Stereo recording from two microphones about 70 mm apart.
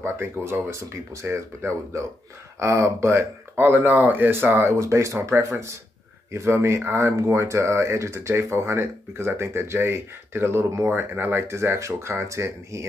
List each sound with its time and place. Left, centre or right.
0.0 s speech: right
3.5 s speech: right
10.9 s speech: right